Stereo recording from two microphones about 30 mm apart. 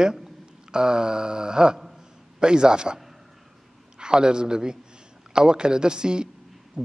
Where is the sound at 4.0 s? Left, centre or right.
Right.